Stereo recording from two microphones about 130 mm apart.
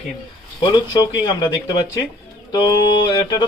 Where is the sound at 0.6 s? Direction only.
35° left (ahead or behind).